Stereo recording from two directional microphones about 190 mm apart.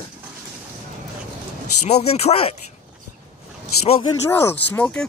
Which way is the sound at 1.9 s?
35° left (ahead or behind).